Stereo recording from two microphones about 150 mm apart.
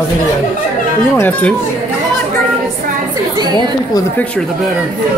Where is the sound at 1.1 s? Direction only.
15° left (ahead or behind).